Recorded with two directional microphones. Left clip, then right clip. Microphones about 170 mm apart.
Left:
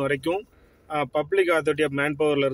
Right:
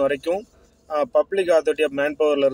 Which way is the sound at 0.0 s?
35° left (ahead or behind).